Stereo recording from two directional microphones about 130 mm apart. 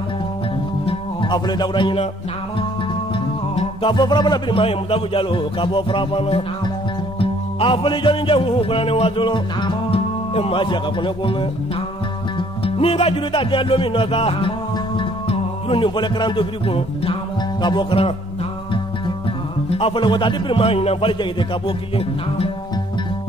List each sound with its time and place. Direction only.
0.8 s music: 35° left (ahead or behind)
3.8 s speech: 35° left (ahead or behind)
7.2 s music: 45° left (ahead or behind)
12.4 s music: 45° left (ahead or behind)
17.6 s speech: 35° left (ahead or behind)
19.7 s a man's voice: 45° left (ahead or behind)